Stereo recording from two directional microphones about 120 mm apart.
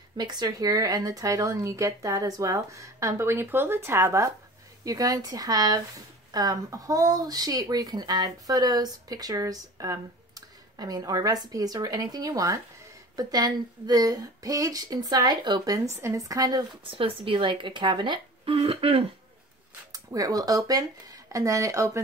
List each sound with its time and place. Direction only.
0.2 s speech: 35° right (ahead or behind)
16.8 s speech: 45° right (ahead or behind)
19.9 s speech: 30° right (ahead or behind)